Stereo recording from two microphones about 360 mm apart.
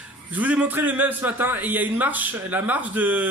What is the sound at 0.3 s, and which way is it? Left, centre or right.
A man's voice, centre.